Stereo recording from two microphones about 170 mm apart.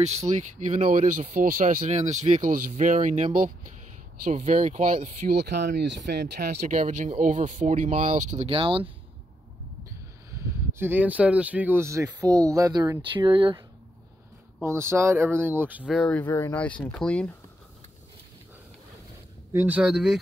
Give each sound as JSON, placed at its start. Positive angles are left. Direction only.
{"t": 0.3, "sound": "speech", "side_deg": -45}
{"t": 5.3, "sound": "speech", "side_deg": -75}
{"t": 6.7, "sound": "speech", "side_deg": -50}
{"t": 8.5, "sound": "speech", "side_deg": -30}
{"t": 10.3, "sound": "speech", "side_deg": -15}
{"t": 14.6, "sound": "speech", "side_deg": -15}
{"t": 19.5, "sound": "speech", "side_deg": -10}